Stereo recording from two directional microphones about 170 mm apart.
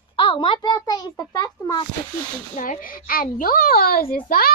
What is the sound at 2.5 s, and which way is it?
A child's voice, 50° left (ahead or behind).